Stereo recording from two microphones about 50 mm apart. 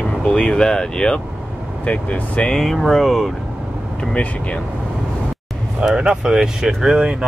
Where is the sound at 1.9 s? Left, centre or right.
Left.